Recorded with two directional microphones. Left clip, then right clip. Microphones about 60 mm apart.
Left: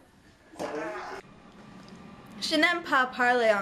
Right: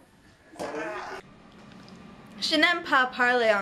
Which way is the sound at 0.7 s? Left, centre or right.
Centre.